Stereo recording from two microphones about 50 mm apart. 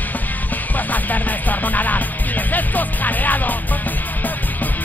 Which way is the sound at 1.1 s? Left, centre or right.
Left.